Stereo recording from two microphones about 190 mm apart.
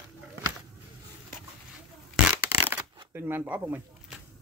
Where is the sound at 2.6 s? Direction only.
10° right (ahead or behind).